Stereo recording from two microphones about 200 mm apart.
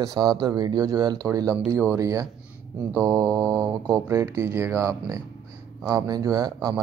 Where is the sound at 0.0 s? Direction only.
20° right (ahead or behind).